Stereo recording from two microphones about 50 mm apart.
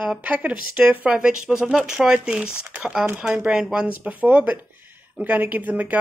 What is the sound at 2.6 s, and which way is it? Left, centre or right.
Speech, right.